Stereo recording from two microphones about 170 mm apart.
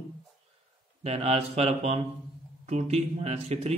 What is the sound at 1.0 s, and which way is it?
Speech, 35° right (ahead or behind).